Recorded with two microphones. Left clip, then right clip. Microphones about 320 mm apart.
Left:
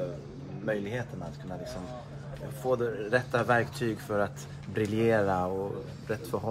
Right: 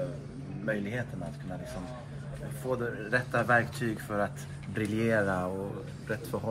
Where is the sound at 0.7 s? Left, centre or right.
Left.